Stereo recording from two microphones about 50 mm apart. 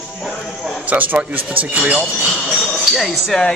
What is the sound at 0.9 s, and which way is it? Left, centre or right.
Speech, right.